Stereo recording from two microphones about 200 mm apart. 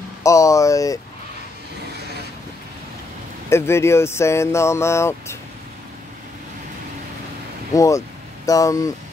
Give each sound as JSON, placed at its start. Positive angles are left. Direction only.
{"t": 0.2, "sound": "speech", "side_deg": 15}
{"t": 3.4, "sound": "speech", "side_deg": 15}
{"t": 7.7, "sound": "speech", "side_deg": 15}